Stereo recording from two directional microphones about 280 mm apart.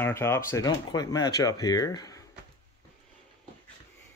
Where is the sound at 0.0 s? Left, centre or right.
Centre.